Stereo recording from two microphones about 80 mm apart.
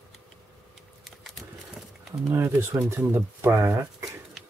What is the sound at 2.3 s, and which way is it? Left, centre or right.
Speech, right.